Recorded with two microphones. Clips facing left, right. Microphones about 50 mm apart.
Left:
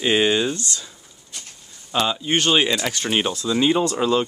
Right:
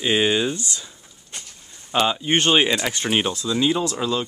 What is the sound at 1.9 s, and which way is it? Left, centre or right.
Speech, centre.